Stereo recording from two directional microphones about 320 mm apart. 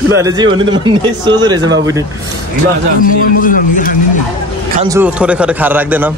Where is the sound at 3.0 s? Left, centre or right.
Left.